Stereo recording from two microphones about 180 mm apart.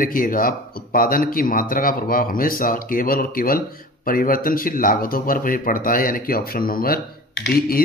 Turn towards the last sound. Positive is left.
turn(degrees=60)  # may be behind; listen again after turning